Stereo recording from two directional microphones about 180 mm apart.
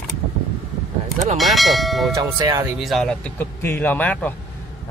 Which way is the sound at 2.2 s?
20° right (ahead or behind).